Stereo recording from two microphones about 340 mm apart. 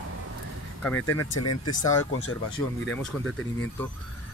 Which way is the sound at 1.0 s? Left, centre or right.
Left.